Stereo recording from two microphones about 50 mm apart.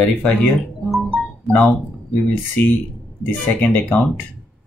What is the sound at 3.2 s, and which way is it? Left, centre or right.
Speech, left.